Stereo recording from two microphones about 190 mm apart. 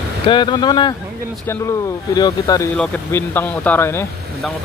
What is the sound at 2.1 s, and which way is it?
Speech, 20° left (ahead or behind).